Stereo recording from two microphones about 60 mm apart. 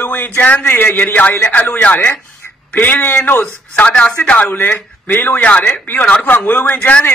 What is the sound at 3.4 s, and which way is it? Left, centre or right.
Speech, left.